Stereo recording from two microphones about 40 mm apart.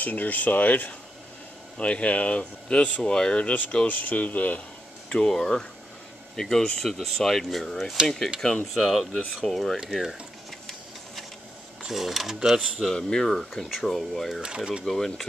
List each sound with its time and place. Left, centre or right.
0.0 s speech: left
1.8 s speech: left
3.1 s speech: left
3.8 s speech: left
5.1 s speech: centre
8.4 s speech: centre
8.7 s speech: centre
9.8 s speech: centre
11.8 s speech: centre
12.4 s speech: centre
12.9 s speech: centre
14.4 s speech: right
14.9 s speech: centre